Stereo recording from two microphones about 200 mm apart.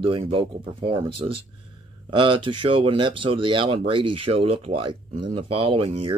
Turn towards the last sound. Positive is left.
turn(degrees=-25)  # may be behind; listen again after turning